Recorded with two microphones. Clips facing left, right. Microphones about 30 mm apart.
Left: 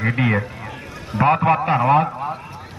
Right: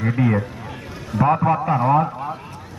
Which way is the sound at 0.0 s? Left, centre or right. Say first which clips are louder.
Even; left.